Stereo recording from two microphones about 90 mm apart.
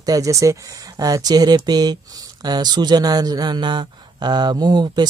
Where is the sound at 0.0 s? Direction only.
40° right (ahead or behind).